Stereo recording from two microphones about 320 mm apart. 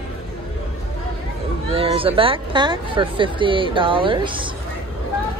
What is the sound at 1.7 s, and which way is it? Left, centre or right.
Speech, centre.